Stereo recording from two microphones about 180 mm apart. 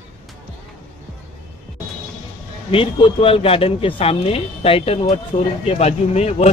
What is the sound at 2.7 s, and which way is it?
Speech, 30° left (ahead or behind).